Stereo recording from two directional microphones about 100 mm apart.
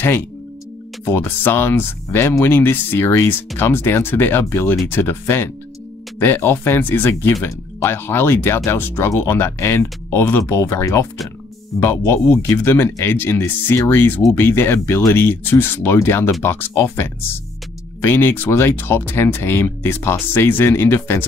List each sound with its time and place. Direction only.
1.0 s speech: 20° left (ahead or behind)